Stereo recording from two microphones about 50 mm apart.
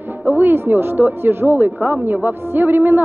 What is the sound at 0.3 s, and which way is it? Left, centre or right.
A woman's voice, right.